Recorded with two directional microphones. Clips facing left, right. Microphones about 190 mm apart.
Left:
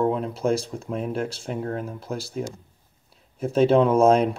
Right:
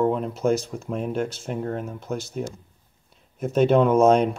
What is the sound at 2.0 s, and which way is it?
Speech, 30° left (ahead or behind).